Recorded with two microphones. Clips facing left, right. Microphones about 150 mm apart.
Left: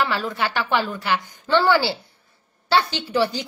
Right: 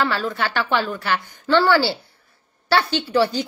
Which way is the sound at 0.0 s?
15° left (ahead or behind).